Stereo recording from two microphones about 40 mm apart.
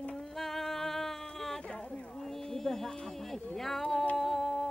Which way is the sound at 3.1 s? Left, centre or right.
Centre.